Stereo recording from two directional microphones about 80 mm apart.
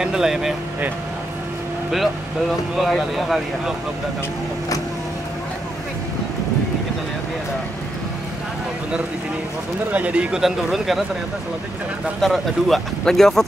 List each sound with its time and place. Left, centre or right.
0.0 s speech: centre
2.8 s speech: centre
9.9 s speech: centre
10.4 s speech: centre
12.2 s speech: centre